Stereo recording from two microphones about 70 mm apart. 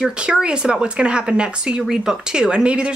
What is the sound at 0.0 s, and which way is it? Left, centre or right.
Speech, centre.